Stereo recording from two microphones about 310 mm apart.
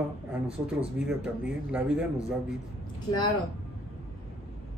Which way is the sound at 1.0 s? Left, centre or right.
Centre.